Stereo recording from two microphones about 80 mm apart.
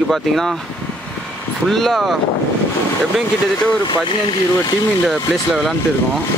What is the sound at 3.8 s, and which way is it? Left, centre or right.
Speech, left.